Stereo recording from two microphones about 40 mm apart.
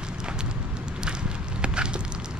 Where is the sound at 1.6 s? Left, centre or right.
Right.